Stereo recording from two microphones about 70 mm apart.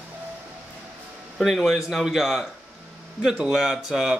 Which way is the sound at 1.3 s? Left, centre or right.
Centre.